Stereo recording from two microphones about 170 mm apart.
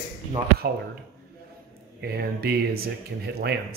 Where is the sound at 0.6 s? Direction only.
70° right (ahead or behind).